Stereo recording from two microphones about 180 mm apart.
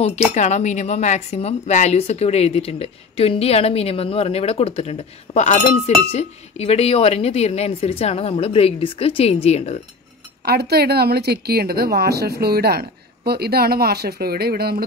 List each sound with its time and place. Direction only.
0.3 s speech: 40° left (ahead or behind)
10.4 s a woman's voice: 60° right (ahead or behind)